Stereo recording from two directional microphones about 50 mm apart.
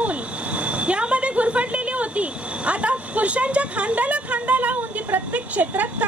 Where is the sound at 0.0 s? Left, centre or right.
Right.